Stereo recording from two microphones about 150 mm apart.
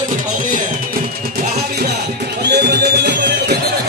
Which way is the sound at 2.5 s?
90° right.